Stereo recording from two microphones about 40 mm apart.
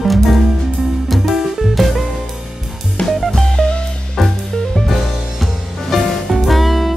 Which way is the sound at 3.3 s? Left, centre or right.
Centre.